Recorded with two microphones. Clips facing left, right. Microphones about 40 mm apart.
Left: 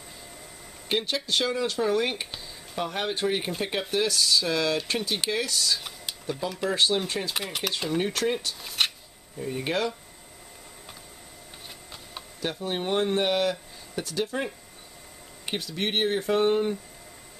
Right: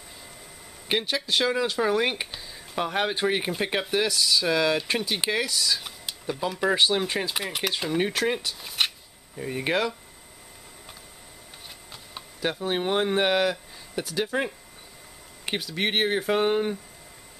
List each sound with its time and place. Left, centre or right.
0.8 s speech: centre
6.4 s speech: centre
9.4 s speech: right
12.4 s speech: right
14.2 s speech: right
15.7 s speech: centre